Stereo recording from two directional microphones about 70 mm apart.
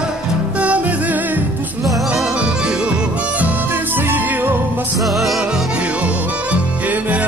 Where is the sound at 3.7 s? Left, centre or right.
Right.